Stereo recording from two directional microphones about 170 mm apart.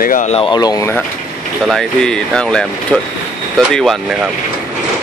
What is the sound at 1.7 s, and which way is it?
Speech, 5° left (ahead or behind).